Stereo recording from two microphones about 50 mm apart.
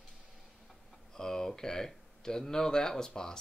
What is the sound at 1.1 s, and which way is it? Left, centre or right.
Speech, centre.